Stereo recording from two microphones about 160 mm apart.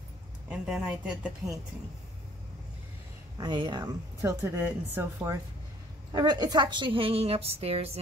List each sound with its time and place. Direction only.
0.5 s speech: 5° right (ahead or behind)
3.3 s a woman's voice: 30° right (ahead or behind)